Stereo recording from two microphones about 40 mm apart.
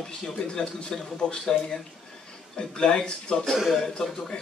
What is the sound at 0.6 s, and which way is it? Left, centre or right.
Speech, left.